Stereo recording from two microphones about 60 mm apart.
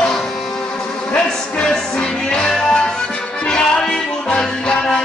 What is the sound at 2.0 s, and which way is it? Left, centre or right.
Music, centre.